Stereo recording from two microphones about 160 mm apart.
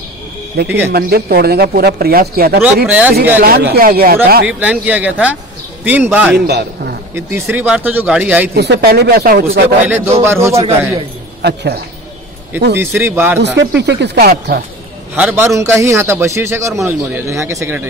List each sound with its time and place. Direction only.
0.7 s a man's voice: 15° right (ahead or behind)
0.9 s speech: 75° right (ahead or behind)
2.9 s a man's voice: 10° right (ahead or behind)
3.4 s speech: 75° right (ahead or behind)
4.5 s a man's voice: 10° right (ahead or behind)
6.3 s a man's voice: 90° right
7.2 s a man's voice: 15° right (ahead or behind)
8.5 s speech: 90° right; by 9.8 s 70° right (ahead or behind)
9.8 s a man's voice: 15° right (ahead or behind)
11.4 s speech: 90° right
12.7 s a man's voice: 15° right (ahead or behind)
13.4 s speech: 90° right; by 14.6 s 75° right (ahead or behind)
15.1 s a man's voice: 10° right (ahead or behind)